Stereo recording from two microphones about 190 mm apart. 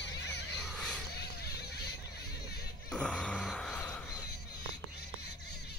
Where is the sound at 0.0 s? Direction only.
65° left (ahead or behind).